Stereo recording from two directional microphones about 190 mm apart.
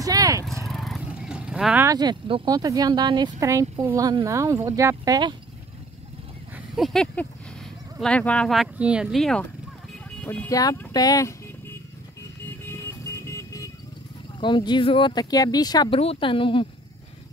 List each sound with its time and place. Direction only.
0.0 s vehicle: 20° right (ahead or behind)
0.7 s vehicle: centre (ahead or behind)
1.9 s speech: 20° right (ahead or behind)
6.7 s speech: centre (ahead or behind); by 11.3 s 20° left (ahead or behind)
12.4 s music: 10° left (ahead or behind)
14.4 s speech: 25° left (ahead or behind)